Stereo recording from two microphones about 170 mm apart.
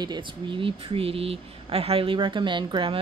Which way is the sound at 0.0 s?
25° right (ahead or behind).